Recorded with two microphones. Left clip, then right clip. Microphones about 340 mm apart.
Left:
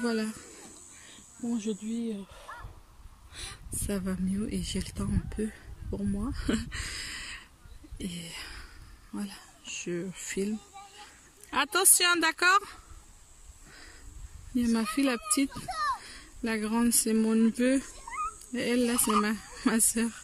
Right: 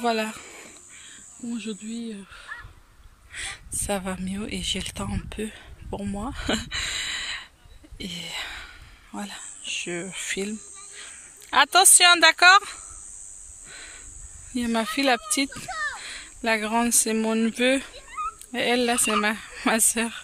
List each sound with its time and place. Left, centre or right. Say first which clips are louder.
0.0 s speech: right 7 dB; centre
1.0 s speech: even; centre
8.0 s whispering: right 8 dB; centre
11.5 s speech: right 9 dB; centre
14.5 s speech: right 4 dB; centre